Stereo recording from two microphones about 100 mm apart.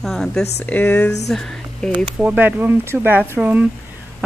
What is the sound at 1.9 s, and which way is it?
A woman's voice, 15° right (ahead or behind).